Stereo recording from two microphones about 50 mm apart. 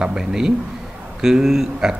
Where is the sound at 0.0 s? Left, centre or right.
Centre.